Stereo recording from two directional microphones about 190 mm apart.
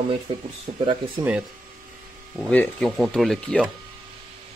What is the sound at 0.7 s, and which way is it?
Speech, 40° right (ahead or behind).